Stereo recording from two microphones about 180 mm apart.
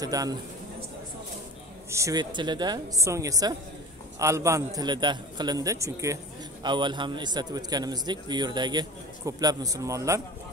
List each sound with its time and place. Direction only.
0.0 s a man's voice: 20° right (ahead or behind)
1.9 s a man's voice: 15° right (ahead or behind)